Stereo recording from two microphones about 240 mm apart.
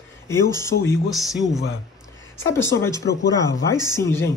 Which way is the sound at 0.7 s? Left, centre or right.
Left.